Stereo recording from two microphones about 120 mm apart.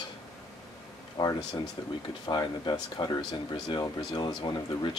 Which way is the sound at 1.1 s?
35° left (ahead or behind).